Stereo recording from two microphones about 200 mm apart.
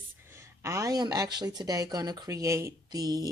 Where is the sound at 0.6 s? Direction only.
15° right (ahead or behind).